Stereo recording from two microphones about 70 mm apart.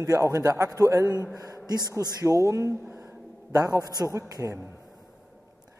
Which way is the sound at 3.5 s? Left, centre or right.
Right.